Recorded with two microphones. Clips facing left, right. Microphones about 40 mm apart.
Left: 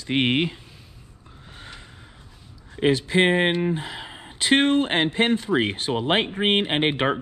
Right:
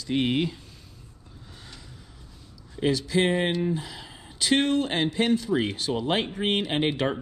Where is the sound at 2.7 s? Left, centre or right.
Left.